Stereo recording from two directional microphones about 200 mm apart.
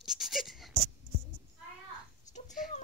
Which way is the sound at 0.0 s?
Centre (ahead or behind).